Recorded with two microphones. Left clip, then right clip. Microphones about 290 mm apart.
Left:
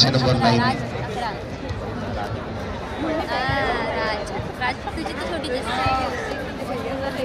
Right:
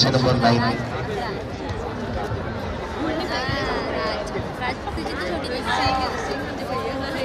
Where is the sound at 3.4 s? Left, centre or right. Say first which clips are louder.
Left 2 dB; left.